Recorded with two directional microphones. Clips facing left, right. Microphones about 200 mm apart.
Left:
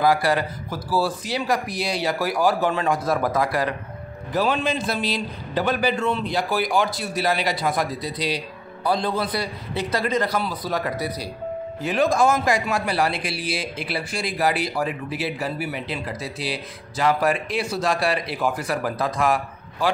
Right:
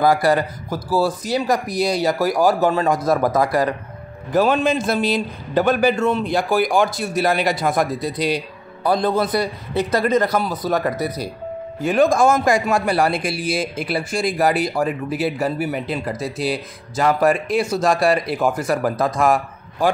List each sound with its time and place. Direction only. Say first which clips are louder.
0.0 s a man's voice: right 4 dB; 45° right (ahead or behind)